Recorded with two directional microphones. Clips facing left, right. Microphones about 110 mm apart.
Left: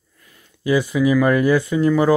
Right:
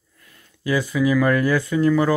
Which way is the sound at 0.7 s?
20° left (ahead or behind).